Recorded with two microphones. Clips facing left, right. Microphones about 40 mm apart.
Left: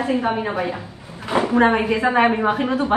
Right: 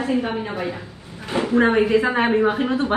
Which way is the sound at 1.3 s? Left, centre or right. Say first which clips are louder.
Left 3 dB; left.